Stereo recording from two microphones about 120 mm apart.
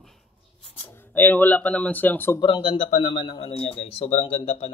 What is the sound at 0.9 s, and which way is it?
Speech, 15° left (ahead or behind).